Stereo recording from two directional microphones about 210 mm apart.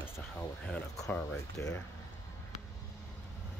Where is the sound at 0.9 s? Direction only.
15° left (ahead or behind).